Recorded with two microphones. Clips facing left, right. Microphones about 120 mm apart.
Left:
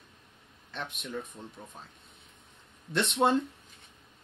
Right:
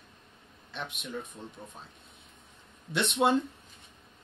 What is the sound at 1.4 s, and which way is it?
Speech, 10° left (ahead or behind).